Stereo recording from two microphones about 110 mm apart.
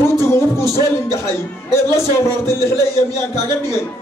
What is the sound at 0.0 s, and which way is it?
Music, 25° left (ahead or behind).